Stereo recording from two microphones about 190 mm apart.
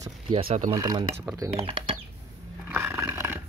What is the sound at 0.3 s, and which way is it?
Speech, 30° right (ahead or behind).